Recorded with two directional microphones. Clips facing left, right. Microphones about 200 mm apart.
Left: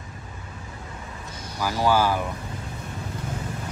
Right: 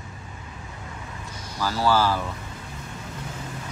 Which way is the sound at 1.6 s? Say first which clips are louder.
Even; 15° left (ahead or behind).